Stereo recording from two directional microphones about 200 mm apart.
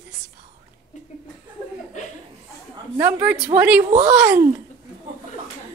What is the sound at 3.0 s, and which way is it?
Speech, 10° right (ahead or behind).